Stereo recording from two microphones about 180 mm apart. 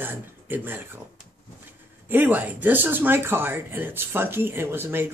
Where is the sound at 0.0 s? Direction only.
10° right (ahead or behind).